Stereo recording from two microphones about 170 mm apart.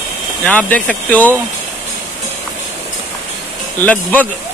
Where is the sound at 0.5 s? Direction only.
10° left (ahead or behind).